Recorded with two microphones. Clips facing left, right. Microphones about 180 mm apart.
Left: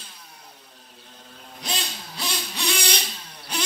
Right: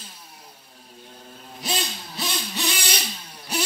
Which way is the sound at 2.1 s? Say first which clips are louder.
Right 2 dB; centre (ahead or behind).